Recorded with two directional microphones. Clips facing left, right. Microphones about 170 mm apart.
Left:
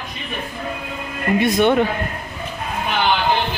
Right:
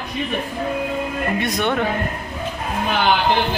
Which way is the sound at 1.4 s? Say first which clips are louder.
Left 8 dB; centre (ahead or behind).